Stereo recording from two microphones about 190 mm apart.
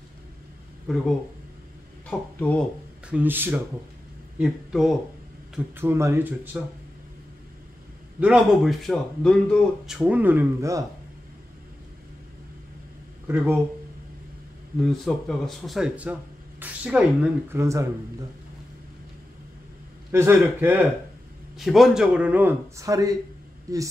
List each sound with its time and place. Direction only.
0.8 s speech: centre (ahead or behind)
3.1 s speech: 10° right (ahead or behind)
5.8 s speech: 15° right (ahead or behind)
8.2 s speech: 5° right (ahead or behind)
13.3 s speech: 10° right (ahead or behind)
14.8 s speech: centre (ahead or behind); by 17.8 s 15° right (ahead or behind)
20.1 s speech: 15° right (ahead or behind)